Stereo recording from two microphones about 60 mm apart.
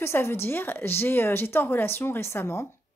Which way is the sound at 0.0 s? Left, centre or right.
Left.